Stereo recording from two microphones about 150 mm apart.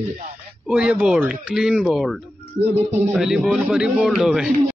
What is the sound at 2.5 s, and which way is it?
Speech, 45° right (ahead or behind).